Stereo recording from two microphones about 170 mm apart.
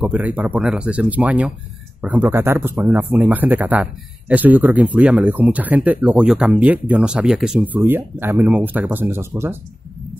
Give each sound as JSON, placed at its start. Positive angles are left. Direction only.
{"t": 0.0, "sound": "speech", "side_deg": -10}